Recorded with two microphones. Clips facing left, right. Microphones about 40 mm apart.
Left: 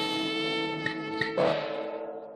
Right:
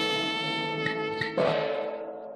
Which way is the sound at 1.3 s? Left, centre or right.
Centre.